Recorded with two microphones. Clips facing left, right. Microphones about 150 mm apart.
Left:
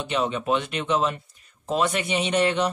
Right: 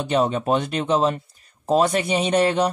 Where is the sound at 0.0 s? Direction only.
40° right (ahead or behind).